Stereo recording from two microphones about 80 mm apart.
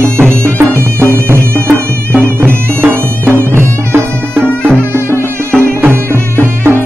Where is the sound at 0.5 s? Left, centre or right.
Right.